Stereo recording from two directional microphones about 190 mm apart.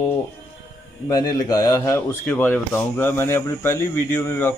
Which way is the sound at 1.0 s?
20° left (ahead or behind).